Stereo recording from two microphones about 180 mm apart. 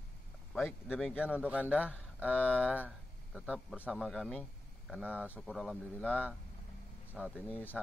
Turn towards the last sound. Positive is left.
turn(degrees=10)  # may be behind; listen again after turning